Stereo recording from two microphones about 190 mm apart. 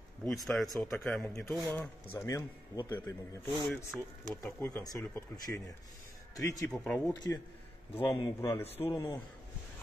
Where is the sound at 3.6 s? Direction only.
Centre (ahead or behind).